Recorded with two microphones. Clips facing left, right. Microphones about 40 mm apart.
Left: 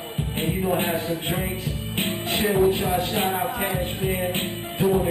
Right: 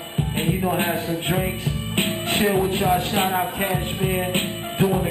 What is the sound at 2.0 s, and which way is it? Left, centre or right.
Music, right.